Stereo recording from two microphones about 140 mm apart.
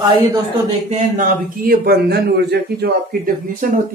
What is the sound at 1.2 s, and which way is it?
Speech, 90° right.